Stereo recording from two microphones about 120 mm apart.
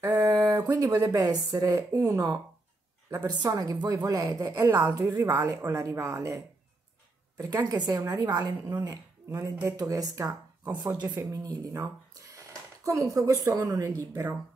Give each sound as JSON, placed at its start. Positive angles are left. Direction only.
{"t": 0.0, "sound": "a woman's voice", "side_deg": -30}
{"t": 12.1, "sound": "a sound", "side_deg": -30}
{"t": 12.8, "sound": "a woman's voice", "side_deg": -25}